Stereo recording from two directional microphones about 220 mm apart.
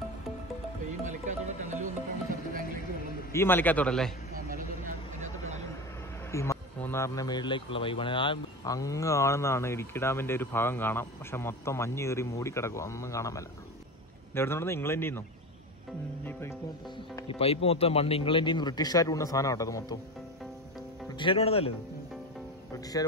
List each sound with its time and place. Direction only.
1.0 s music: 35° right (ahead or behind)
3.3 s a man's voice: 10° left (ahead or behind)
4.5 s vehicle: 40° right (ahead or behind)
6.3 s a man's voice: 10° left (ahead or behind)
16.3 s a man's voice: 10° left (ahead or behind)
17.1 s speech: 25° left (ahead or behind)
21.1 s speech: 25° left (ahead or behind)